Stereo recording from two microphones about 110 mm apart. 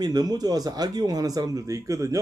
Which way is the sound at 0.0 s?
35° right (ahead or behind).